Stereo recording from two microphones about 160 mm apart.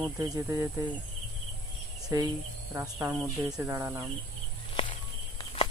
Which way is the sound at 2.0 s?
20° right (ahead or behind).